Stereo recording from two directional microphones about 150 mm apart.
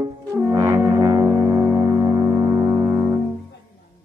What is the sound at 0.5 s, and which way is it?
Music, 20° right (ahead or behind).